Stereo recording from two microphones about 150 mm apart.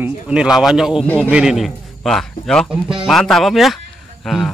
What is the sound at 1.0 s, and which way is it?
Speech, 10° left (ahead or behind).